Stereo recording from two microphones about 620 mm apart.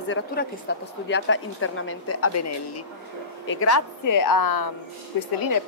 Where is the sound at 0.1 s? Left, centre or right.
Centre.